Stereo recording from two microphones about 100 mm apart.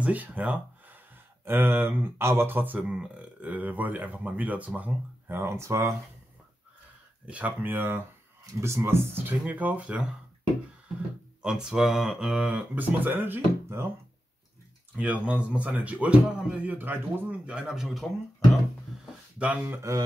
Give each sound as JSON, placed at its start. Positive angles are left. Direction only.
{"t": 0.0, "sound": "speech", "side_deg": -15}
{"t": 7.2, "sound": "speech", "side_deg": -15}
{"t": 11.4, "sound": "speech", "side_deg": -5}
{"t": 12.7, "sound": "speech", "side_deg": -20}
{"t": 15.0, "sound": "speech", "side_deg": -15}
{"t": 19.3, "sound": "speech", "side_deg": -15}